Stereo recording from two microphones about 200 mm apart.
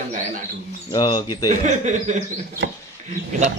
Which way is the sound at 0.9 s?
20° left (ahead or behind).